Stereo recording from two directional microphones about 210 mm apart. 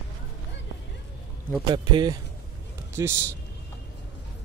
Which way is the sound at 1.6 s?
20° right (ahead or behind).